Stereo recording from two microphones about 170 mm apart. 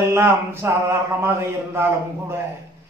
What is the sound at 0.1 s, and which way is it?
Speech, 15° right (ahead or behind).